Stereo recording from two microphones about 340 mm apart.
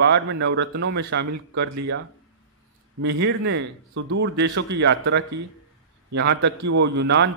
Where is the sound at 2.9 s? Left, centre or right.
Right.